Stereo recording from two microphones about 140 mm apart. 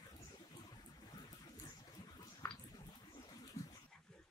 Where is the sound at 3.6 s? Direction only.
25° left (ahead or behind).